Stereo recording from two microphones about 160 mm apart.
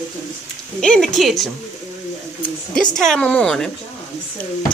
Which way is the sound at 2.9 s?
5° left (ahead or behind).